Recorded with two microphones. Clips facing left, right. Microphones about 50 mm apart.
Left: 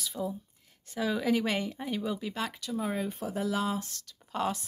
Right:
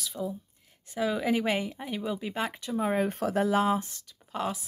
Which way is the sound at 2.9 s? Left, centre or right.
Right.